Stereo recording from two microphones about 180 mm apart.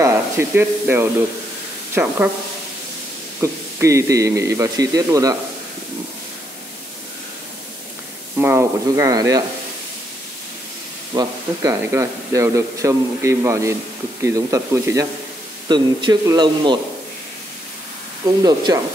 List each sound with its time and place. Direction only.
0.0 s speech: 15° right (ahead or behind)
3.3 s a man's voice: 15° right (ahead or behind)
8.4 s a man's voice: 15° right (ahead or behind)
11.1 s a man's voice: 15° right (ahead or behind)
18.4 s speech: 20° right (ahead or behind)